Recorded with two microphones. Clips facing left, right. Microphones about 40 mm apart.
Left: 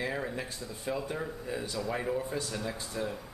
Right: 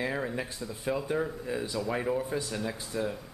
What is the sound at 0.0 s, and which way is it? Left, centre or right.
Speech, centre.